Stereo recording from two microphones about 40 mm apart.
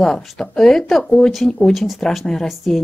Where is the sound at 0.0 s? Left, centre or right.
Centre.